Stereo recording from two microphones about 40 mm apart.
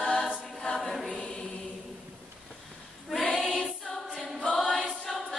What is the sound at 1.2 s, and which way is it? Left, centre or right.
Chant, centre.